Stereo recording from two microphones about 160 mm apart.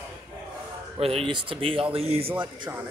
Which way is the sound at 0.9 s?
35° right (ahead or behind).